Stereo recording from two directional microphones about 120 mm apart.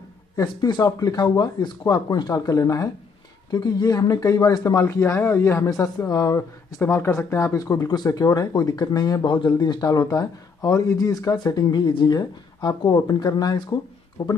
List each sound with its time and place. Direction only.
0.6 s speech: 35° left (ahead or behind)
6.8 s speech: 20° left (ahead or behind)